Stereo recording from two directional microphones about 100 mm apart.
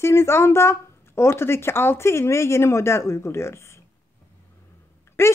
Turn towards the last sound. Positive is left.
turn(degrees=25)  # may be behind; listen again after turning